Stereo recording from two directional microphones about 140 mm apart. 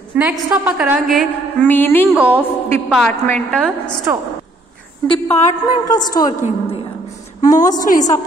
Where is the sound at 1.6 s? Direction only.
15° left (ahead or behind).